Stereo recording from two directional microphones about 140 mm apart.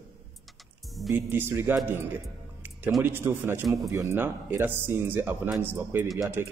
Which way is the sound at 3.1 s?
15° right (ahead or behind).